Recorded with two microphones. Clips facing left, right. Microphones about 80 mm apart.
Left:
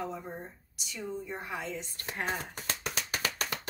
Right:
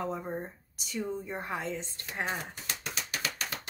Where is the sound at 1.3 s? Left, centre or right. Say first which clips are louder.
Right 2 dB; right.